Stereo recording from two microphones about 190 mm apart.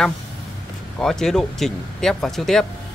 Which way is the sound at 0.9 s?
Centre (ahead or behind).